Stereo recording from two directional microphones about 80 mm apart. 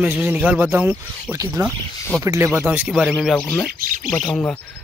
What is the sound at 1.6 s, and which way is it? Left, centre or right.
Speech, right.